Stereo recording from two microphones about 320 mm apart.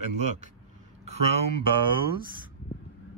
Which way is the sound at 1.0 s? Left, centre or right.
Centre.